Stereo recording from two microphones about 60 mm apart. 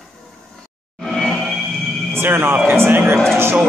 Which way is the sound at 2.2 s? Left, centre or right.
Right.